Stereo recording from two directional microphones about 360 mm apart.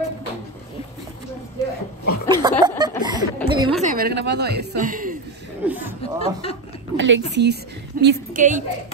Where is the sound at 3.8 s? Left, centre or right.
Right.